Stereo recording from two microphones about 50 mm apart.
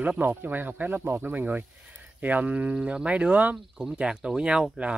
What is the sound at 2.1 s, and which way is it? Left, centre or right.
Speech, right.